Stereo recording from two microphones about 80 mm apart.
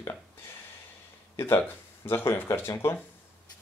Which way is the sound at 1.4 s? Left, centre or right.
Left.